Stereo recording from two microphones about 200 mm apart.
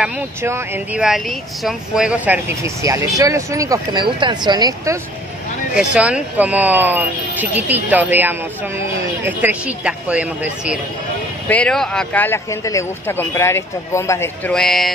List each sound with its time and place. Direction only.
0.0 s speech: 10° right (ahead or behind)
5.8 s speech: 5° right (ahead or behind)
11.4 s speech: 5° left (ahead or behind)